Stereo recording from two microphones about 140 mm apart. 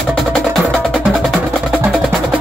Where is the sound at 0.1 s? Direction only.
5° left (ahead or behind).